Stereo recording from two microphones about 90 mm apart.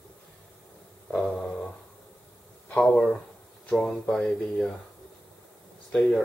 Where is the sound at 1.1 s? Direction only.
10° left (ahead or behind).